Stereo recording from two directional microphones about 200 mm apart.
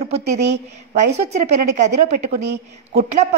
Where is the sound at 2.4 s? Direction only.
55° right (ahead or behind).